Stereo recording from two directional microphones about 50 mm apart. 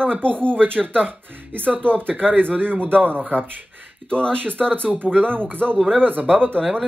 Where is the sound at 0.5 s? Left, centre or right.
Right.